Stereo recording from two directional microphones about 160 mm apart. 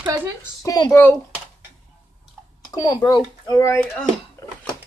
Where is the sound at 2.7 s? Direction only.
25° left (ahead or behind).